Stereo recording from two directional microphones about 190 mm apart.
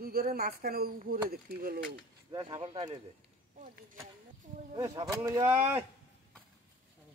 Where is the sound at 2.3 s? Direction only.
25° right (ahead or behind).